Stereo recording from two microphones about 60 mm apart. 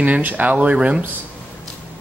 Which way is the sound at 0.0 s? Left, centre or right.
Right.